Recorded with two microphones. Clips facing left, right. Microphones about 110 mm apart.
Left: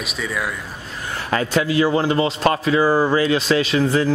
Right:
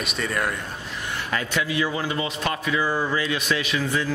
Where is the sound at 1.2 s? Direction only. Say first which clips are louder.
Left 8 dB; 40° left (ahead or behind).